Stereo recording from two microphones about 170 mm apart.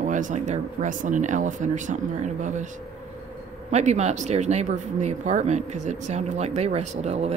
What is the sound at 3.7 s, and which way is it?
Speech, 40° right (ahead or behind).